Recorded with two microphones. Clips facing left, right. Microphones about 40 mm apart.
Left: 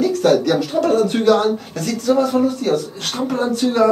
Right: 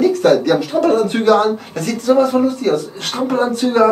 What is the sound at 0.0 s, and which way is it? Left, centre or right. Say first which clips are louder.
Speech: right 2 dB; centre.